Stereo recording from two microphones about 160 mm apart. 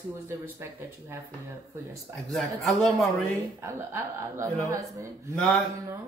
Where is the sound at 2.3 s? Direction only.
Centre (ahead or behind).